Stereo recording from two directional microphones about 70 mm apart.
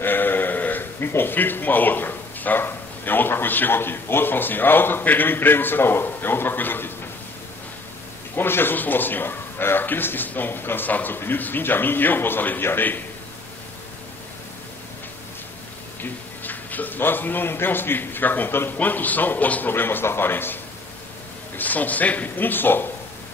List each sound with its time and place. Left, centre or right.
0.0 s speech: left
8.4 s a man's voice: left
16.0 s a man's voice: left
21.5 s a man's voice: left